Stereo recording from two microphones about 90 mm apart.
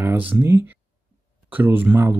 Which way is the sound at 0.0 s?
25° right (ahead or behind).